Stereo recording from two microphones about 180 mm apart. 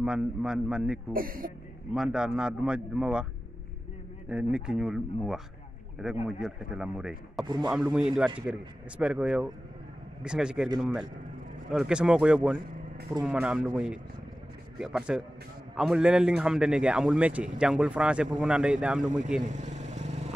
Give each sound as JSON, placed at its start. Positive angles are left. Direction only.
{"t": 0.0, "sound": "a man's voice", "side_deg": -5}
{"t": 1.1, "sound": "speech", "side_deg": -50}
{"t": 2.0, "sound": "a man's voice", "side_deg": -5}
{"t": 4.3, "sound": "a man's voice", "side_deg": -5}
{"t": 11.7, "sound": "a man's voice", "side_deg": -5}
{"t": 19.4, "sound": "vehicle", "side_deg": -40}